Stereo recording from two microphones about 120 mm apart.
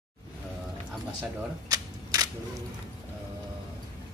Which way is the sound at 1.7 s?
30° right (ahead or behind).